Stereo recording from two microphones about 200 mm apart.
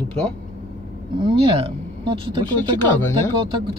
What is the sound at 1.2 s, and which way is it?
Speech, 25° right (ahead or behind).